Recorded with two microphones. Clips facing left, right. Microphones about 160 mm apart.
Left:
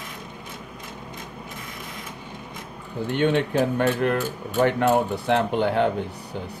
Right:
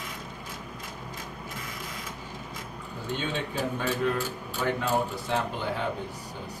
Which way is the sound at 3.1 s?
65° left (ahead or behind).